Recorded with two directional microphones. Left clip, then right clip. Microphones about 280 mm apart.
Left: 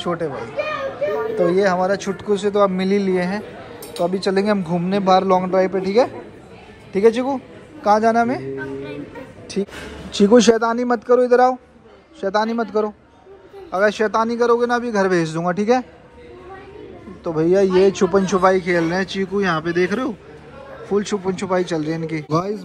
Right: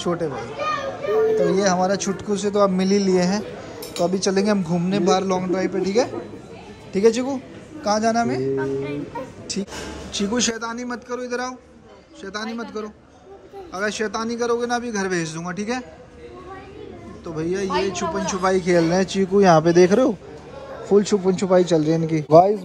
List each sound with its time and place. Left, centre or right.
0.0 s a man's voice: centre
1.3 s a man's voice: centre
17.2 s speech: centre
18.5 s a man's voice: centre